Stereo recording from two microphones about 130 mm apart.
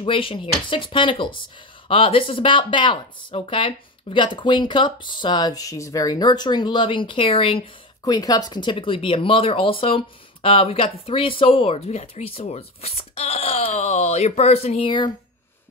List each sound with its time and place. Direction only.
0.0 s speech: 45° left (ahead or behind)
8.0 s speech: 30° left (ahead or behind)